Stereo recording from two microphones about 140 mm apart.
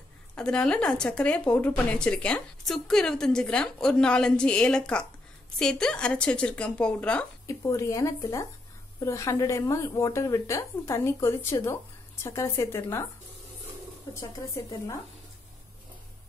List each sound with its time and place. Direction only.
0.4 s a woman's voice: 5° left (ahead or behind)
7.4 s speech: 20° left (ahead or behind)
14.2 s speech: 25° left (ahead or behind)